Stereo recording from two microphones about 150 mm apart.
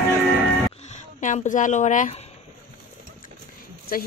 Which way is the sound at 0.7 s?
50° left (ahead or behind).